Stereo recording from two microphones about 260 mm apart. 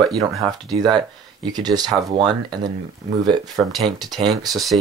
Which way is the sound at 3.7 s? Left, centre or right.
Centre.